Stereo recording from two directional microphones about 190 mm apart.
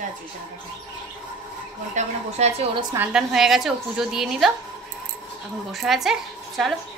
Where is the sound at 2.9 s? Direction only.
5° right (ahead or behind).